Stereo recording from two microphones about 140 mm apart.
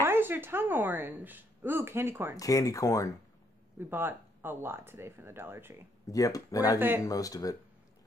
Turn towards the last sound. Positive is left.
turn(degrees=25)  # may be behind; listen again after turning